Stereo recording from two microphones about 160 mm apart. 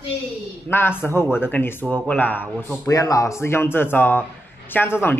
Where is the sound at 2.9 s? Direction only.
20° left (ahead or behind).